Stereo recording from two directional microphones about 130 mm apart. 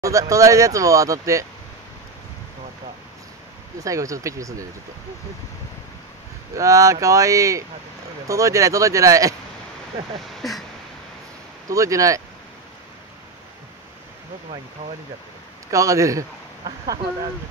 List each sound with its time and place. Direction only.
0.0 s speech: 25° right (ahead or behind)
3.8 s speech: 25° right (ahead or behind)
6.5 s speech: 25° right (ahead or behind)
10.4 s a sound: centre (ahead or behind)
11.7 s speech: 25° right (ahead or behind)
15.7 s speech: 25° right (ahead or behind)